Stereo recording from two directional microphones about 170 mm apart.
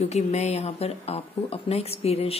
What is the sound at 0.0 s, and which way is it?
Speech, 40° left (ahead or behind).